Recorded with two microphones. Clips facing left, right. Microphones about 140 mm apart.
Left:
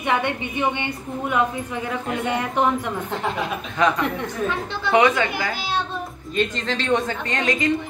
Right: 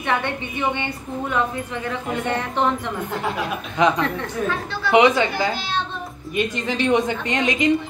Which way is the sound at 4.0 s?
20° left (ahead or behind).